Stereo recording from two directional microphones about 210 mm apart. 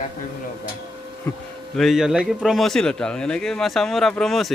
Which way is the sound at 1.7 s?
Centre (ahead or behind).